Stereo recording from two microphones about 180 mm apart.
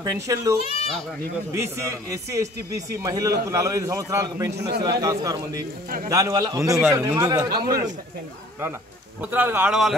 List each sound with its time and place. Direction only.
0.0 s a man's voice: 15° right (ahead or behind)
0.7 s speech: 30° left (ahead or behind)
1.5 s a man's voice: 15° right (ahead or behind)
4.6 s a man's voice: 65° right (ahead or behind)
5.0 s a man's voice: 20° right (ahead or behind)
5.6 s a man's voice: 55° right (ahead or behind)
6.0 s a man's voice: 20° right (ahead or behind)
9.2 s a man's voice: 10° right (ahead or behind)